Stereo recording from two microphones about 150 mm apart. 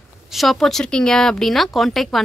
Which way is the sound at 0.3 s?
Centre (ahead or behind).